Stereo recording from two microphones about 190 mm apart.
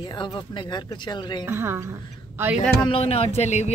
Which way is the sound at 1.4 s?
15° right (ahead or behind).